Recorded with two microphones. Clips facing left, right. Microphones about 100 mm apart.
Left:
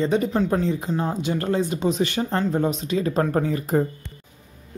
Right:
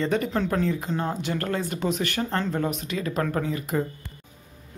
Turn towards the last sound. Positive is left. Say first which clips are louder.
# left 5 dB
turn(degrees=40)  # may be behind; listen again after turning